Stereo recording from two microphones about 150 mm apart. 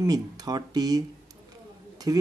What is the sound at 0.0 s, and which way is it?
Speech, 25° right (ahead or behind).